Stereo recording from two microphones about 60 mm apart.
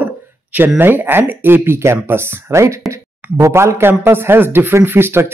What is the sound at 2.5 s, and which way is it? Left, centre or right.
Speech, right.